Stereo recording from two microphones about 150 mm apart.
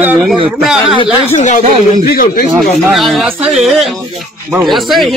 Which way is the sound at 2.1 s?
75° left (ahead or behind).